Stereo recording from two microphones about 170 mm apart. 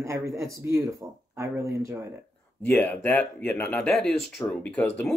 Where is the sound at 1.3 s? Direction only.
15° right (ahead or behind).